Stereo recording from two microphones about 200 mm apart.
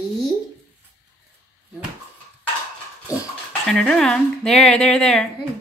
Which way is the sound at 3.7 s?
Centre (ahead or behind).